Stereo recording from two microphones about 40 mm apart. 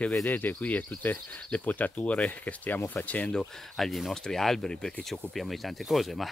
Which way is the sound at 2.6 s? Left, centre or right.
Left.